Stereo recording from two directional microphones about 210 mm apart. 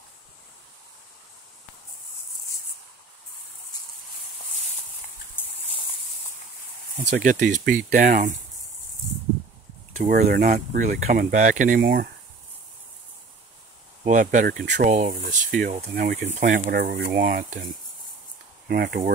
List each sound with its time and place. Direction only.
7.2 s speech: 35° right (ahead or behind)
9.9 s speech: 40° right (ahead or behind)
14.0 s speech: 35° right (ahead or behind)
18.7 s speech: 45° right (ahead or behind)